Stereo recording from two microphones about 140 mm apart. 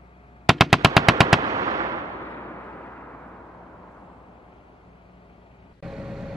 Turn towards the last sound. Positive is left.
turn(degrees=-5)  # may be behind; listen again after turning